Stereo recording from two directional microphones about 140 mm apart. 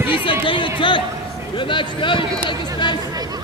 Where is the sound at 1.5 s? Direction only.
35° left (ahead or behind).